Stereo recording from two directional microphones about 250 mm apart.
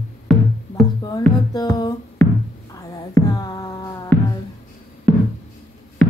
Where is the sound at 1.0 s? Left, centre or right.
Centre.